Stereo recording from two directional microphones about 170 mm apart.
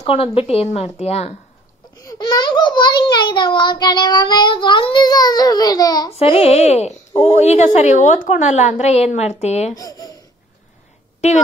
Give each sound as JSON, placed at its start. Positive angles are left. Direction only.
{"t": 0.0, "sound": "a woman's voice", "side_deg": 35}
{"t": 2.0, "sound": "a child's voice", "side_deg": 25}
{"t": 6.1, "sound": "a woman's voice", "side_deg": 35}
{"t": 9.8, "sound": "a child's voice", "side_deg": 20}
{"t": 11.1, "sound": "speech", "side_deg": 40}